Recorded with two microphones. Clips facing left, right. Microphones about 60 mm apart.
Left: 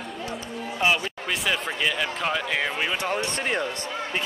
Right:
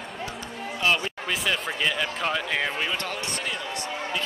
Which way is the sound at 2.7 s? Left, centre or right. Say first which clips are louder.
Left 2 dB; centre.